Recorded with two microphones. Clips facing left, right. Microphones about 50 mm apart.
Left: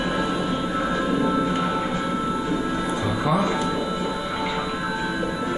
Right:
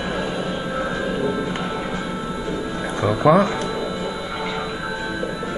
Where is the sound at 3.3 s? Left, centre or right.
Right.